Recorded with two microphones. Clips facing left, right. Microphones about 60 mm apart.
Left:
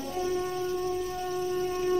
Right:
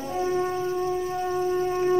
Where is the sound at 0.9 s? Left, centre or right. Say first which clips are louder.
Right 5 dB; right.